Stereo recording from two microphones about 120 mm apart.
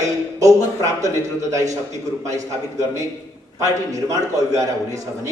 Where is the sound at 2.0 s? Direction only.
25° right (ahead or behind).